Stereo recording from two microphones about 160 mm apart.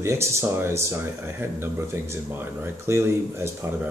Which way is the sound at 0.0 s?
15° right (ahead or behind).